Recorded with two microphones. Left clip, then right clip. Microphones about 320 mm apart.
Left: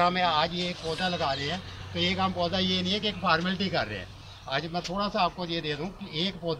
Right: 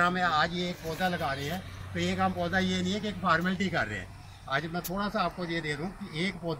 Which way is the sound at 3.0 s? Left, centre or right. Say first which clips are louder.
Right 1 dB; centre.